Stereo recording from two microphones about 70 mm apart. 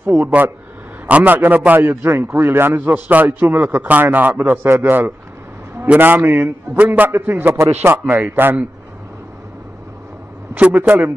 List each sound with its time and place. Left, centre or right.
1.0 s a man's voice: right
10.6 s a man's voice: right